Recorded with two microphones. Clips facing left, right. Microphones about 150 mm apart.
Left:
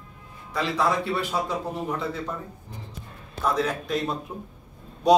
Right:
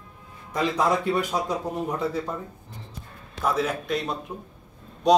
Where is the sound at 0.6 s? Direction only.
15° right (ahead or behind).